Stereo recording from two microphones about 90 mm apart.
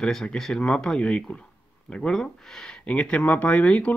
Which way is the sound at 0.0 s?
5° left (ahead or behind).